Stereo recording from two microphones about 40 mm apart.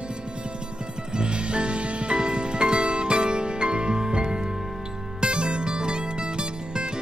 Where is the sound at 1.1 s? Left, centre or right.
Right.